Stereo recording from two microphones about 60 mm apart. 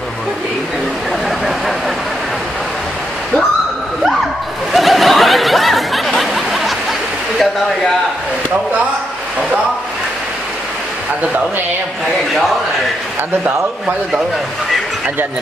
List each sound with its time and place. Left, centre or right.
4.7 s snicker: centre